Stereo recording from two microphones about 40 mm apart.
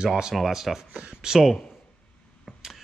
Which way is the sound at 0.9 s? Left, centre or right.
Centre.